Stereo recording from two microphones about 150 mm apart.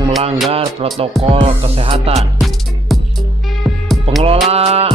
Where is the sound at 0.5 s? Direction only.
40° right (ahead or behind).